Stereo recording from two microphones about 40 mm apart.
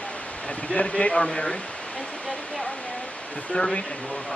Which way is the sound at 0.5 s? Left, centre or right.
Left.